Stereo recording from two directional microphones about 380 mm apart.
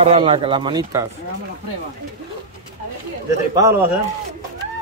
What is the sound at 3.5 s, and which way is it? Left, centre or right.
Speech, centre.